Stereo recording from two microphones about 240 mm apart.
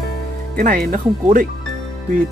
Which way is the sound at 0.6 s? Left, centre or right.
Right.